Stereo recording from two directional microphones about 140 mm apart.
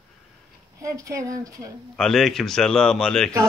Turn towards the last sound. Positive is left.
turn(degrees=5)  # may be behind; listen again after turning